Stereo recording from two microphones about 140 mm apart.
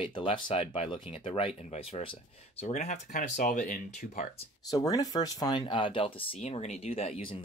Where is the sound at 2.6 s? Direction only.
60° left (ahead or behind).